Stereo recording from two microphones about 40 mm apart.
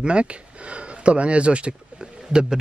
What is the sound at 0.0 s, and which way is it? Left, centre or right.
Speech, right.